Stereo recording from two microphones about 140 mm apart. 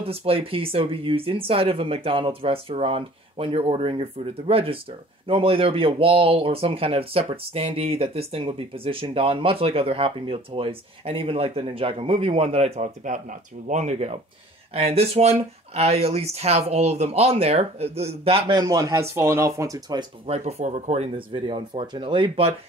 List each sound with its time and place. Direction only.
0.0 s speech: 45° right (ahead or behind)
18.5 s speech: 25° right (ahead or behind)
20.2 s speech: 50° right (ahead or behind)
21.3 s speech: 35° right (ahead or behind)